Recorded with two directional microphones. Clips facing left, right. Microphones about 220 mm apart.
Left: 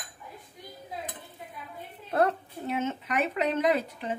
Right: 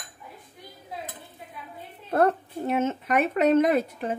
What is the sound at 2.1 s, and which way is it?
Speech, 45° right (ahead or behind).